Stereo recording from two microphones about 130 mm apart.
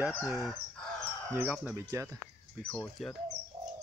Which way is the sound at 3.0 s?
Centre (ahead or behind).